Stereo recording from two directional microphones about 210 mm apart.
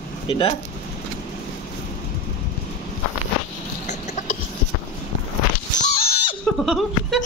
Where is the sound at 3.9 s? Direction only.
35° left (ahead or behind).